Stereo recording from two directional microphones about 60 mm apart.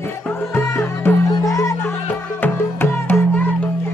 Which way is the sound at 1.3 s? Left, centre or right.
Left.